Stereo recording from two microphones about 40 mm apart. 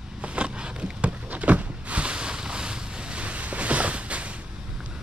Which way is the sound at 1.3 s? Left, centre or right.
Right.